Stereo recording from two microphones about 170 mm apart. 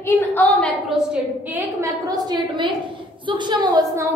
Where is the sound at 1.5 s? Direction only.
20° right (ahead or behind).